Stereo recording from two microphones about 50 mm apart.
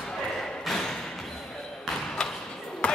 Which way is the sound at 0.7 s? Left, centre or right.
Centre.